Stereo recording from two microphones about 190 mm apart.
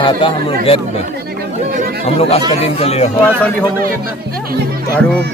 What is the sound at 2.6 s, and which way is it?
Speech, 35° left (ahead or behind).